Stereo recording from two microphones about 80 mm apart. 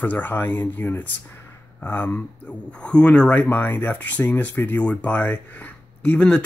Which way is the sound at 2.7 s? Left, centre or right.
Centre.